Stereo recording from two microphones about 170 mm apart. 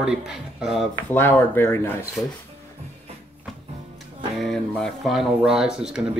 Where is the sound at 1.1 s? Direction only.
10° left (ahead or behind).